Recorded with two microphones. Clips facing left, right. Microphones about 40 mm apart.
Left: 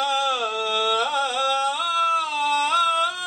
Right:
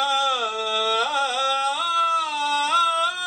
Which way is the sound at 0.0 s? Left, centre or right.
Right.